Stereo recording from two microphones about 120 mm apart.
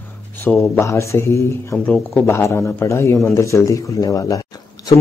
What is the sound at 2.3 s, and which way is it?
Speech, 20° left (ahead or behind).